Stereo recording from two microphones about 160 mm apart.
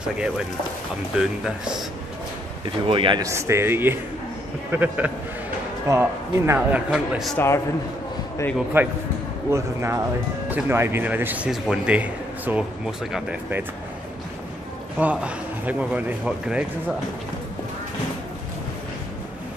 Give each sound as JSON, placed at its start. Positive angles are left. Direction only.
{"t": 2.9, "sound": "speech", "side_deg": -30}
{"t": 3.3, "sound": "speech", "side_deg": -15}
{"t": 7.3, "sound": "a man's voice", "side_deg": 15}
{"t": 8.8, "sound": "speech", "side_deg": -15}
{"t": 15.0, "sound": "speech", "side_deg": -10}